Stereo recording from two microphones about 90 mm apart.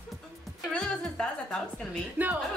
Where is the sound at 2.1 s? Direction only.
20° right (ahead or behind).